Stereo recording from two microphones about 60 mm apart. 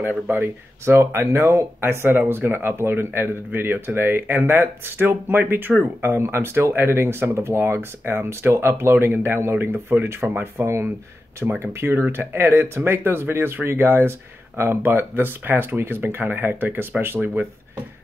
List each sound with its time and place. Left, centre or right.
0.3 s speech: right
10.6 s speech: right